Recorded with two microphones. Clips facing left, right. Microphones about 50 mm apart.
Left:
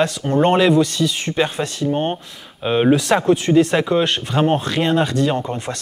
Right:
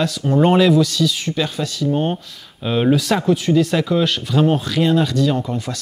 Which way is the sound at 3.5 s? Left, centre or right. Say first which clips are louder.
Left 2 dB; left.